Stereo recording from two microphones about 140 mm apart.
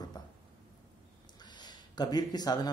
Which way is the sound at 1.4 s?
30° left (ahead or behind).